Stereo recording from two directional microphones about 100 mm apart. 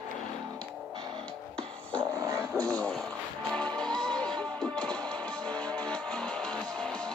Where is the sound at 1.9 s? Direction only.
35° right (ahead or behind).